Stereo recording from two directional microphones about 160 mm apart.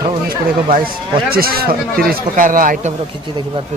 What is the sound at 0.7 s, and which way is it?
Speech, 60° right (ahead or behind).